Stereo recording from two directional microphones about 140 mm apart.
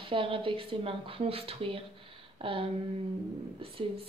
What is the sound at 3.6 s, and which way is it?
Speech, 40° right (ahead or behind).